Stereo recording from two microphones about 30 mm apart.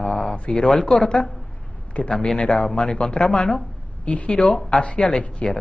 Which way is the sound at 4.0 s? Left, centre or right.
Left.